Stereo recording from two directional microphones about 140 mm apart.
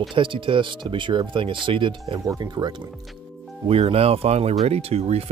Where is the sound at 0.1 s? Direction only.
35° right (ahead or behind).